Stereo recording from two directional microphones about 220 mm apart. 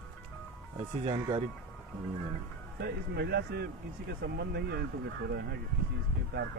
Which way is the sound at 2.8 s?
45° right (ahead or behind).